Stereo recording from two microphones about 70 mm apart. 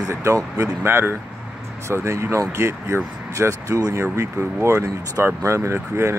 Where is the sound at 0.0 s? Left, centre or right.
Right.